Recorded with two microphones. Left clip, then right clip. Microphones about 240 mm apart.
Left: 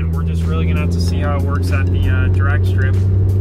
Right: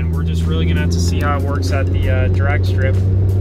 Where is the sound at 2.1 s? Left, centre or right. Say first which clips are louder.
Right 2 dB; centre.